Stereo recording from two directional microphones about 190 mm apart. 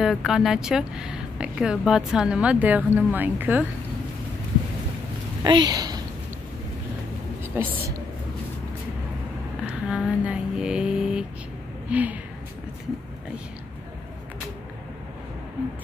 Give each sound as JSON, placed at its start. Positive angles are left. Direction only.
{"t": 0.0, "sound": "speech", "side_deg": 0}
{"t": 5.4, "sound": "speech", "side_deg": -25}
{"t": 7.5, "sound": "a woman's voice", "side_deg": -10}
{"t": 9.7, "sound": "a sound", "side_deg": -5}
{"t": 11.9, "sound": "a woman's voice", "side_deg": -10}